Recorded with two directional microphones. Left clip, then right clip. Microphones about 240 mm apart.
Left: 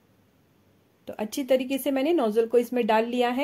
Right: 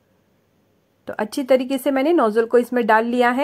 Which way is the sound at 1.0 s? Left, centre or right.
Centre.